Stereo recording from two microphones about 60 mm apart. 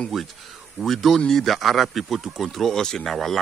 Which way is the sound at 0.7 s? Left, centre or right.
Centre.